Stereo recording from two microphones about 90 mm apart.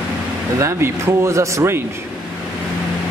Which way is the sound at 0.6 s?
35° right (ahead or behind).